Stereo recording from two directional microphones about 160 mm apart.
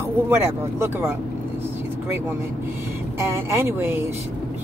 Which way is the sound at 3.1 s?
15° right (ahead or behind).